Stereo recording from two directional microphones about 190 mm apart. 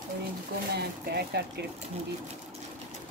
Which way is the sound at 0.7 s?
60° right (ahead or behind).